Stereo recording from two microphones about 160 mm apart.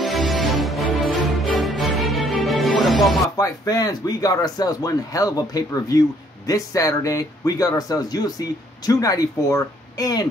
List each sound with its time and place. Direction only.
0.0 s music: centre (ahead or behind)
3.3 s speech: 25° left (ahead or behind)